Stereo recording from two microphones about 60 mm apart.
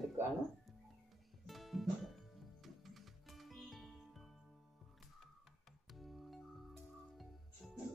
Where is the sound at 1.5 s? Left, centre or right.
Centre.